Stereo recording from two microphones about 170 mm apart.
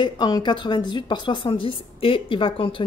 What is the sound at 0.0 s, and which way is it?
A woman's voice, 25° left (ahead or behind).